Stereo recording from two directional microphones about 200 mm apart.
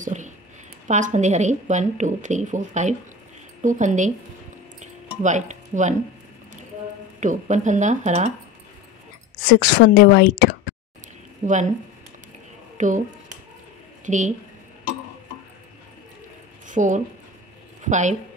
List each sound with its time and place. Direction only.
0.0 s a sound: 40° right (ahead or behind)
0.8 s a woman's voice: 35° right (ahead or behind)
4.7 s music: 35° right (ahead or behind)
7.2 s a woman's voice: 35° right (ahead or behind)
9.4 s a woman's voice: 50° left (ahead or behind)
11.4 s a woman's voice: 40° right (ahead or behind)
12.7 s speech: 40° right (ahead or behind)
14.0 s a woman's voice: 40° right (ahead or behind)
16.6 s a woman's voice: 40° right (ahead or behind)